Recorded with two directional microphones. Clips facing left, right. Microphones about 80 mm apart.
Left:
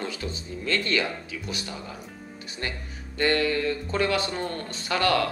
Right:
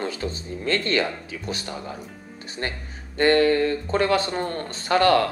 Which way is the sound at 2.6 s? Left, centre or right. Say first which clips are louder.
Right 3 dB; right.